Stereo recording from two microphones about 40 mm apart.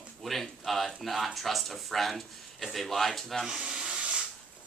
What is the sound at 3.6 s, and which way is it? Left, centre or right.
Hiss, right.